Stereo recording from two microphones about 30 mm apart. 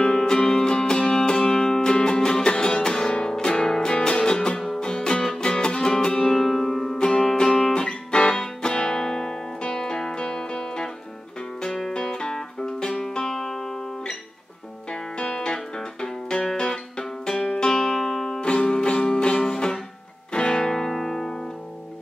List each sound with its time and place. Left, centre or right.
0.0 s music: left
11.9 s music: left
15.1 s music: left
17.7 s music: centre
18.4 s music: left; by 21.3 s centre